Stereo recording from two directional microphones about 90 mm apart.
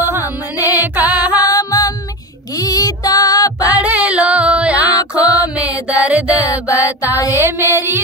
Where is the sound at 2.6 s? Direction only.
40° left (ahead or behind).